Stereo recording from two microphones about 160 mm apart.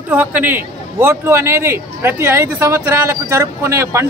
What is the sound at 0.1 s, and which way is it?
A man's voice, 10° right (ahead or behind).